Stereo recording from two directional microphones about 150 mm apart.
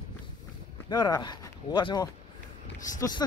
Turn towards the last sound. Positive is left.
turn(degrees=20)  # may be behind; listen again after turning